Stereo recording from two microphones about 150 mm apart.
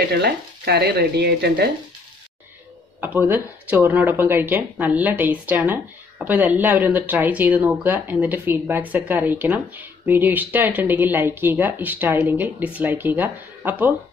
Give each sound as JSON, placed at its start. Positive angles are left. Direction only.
{"t": 0.1, "sound": "speech", "side_deg": -90}
{"t": 3.0, "sound": "speech", "side_deg": -10}